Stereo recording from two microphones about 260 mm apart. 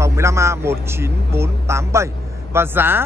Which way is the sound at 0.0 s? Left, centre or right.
Centre.